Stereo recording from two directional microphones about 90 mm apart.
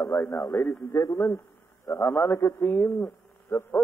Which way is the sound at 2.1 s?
30° left (ahead or behind).